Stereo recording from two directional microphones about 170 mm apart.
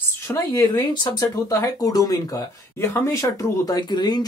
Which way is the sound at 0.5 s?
20° left (ahead or behind).